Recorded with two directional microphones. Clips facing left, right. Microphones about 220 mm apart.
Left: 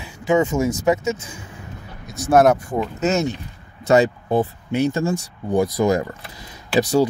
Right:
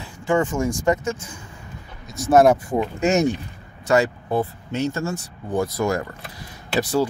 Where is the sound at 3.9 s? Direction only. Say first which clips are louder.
Left 3 dB; 20° left (ahead or behind).